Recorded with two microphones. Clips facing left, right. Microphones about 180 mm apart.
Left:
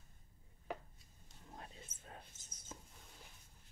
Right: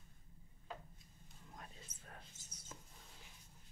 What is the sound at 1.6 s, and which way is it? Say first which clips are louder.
Whispering: left 2 dB; 20° left (ahead or behind).